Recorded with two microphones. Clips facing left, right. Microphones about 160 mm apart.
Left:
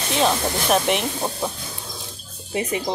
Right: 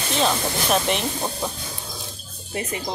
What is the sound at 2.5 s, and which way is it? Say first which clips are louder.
Speech: left 4 dB; 20° left (ahead or behind).